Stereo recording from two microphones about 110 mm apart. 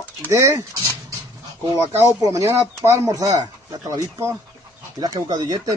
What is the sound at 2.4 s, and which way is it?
Speech, 25° right (ahead or behind).